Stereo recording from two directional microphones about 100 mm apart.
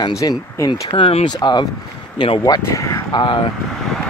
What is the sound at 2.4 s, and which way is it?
Speech, 40° left (ahead or behind).